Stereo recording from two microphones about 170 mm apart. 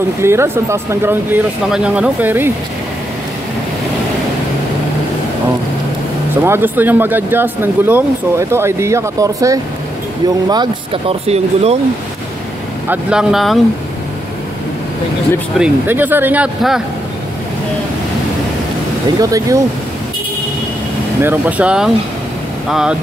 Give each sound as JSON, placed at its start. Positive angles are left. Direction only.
{"t": 0.2, "sound": "speech", "side_deg": -15}
{"t": 6.4, "sound": "speech", "side_deg": -15}
{"t": 12.8, "sound": "speech", "side_deg": -10}
{"t": 15.6, "sound": "speech", "side_deg": -10}
{"t": 19.1, "sound": "speech", "side_deg": -20}
{"t": 21.2, "sound": "speech", "side_deg": -10}